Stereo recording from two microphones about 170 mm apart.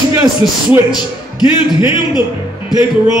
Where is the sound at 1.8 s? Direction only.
25° left (ahead or behind).